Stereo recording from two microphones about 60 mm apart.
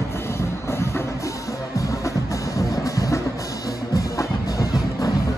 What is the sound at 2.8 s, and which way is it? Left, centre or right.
Music, left.